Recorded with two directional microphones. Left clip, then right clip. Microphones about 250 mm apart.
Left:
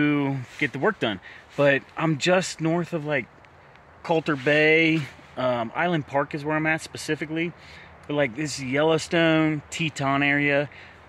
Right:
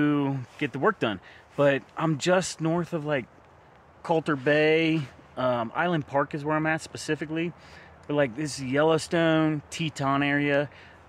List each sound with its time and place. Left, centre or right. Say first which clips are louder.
0.0 s speech: left 2 dB; centre